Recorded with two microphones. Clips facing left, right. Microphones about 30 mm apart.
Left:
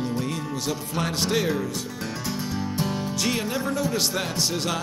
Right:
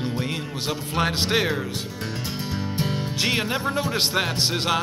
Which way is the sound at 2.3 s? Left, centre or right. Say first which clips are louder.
Left 1 dB; right.